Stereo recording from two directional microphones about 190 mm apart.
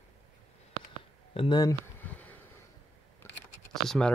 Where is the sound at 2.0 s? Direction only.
10° left (ahead or behind).